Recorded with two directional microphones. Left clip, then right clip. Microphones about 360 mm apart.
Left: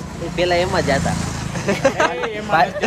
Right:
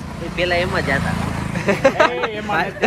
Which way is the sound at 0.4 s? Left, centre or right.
Left.